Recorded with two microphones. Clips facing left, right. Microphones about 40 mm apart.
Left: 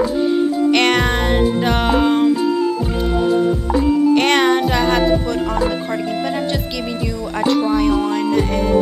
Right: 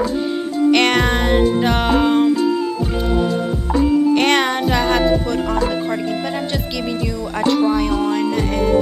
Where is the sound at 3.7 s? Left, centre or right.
Centre.